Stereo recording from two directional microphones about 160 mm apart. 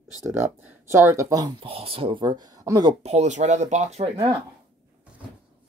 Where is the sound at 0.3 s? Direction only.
15° right (ahead or behind).